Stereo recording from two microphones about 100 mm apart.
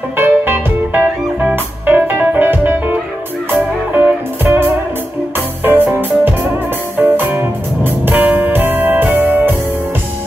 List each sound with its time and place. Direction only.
0.2 s music: 20° right (ahead or behind)
7.0 s music: 20° right (ahead or behind)